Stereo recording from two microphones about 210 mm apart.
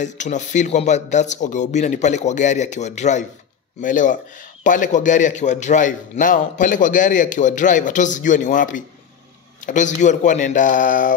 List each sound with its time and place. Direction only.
0.0 s a man's voice: 35° left (ahead or behind)